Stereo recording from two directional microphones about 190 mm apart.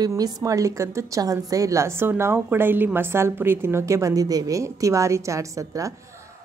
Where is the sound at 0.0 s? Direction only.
20° right (ahead or behind).